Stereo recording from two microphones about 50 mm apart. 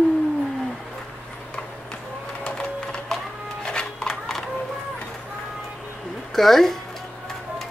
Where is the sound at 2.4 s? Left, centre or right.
Centre.